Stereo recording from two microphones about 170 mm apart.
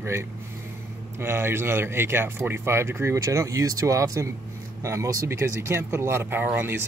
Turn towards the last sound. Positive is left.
turn(degrees=-10)  # may be behind; listen again after turning